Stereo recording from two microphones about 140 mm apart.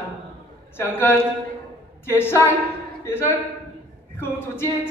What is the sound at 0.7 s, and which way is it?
A woman's voice, 15° left (ahead or behind).